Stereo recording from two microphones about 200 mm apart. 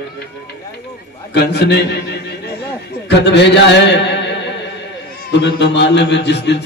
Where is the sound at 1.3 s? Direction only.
55° left (ahead or behind).